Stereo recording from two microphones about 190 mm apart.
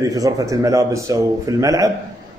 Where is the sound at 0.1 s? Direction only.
20° right (ahead or behind).